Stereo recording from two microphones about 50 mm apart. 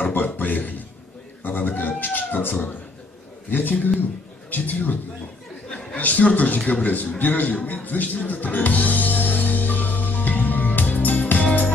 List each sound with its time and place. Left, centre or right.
0.0 s a man's voice: left
5.9 s speech: left
7.2 s music: left